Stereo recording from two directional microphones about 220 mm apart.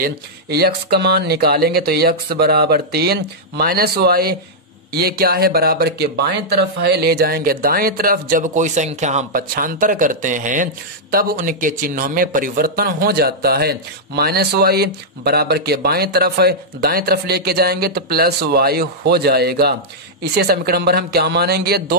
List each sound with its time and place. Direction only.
0.0 s speech: 45° right (ahead or behind)